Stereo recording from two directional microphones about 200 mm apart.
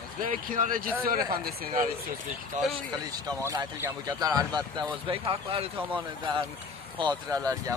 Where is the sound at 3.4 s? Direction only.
15° right (ahead or behind).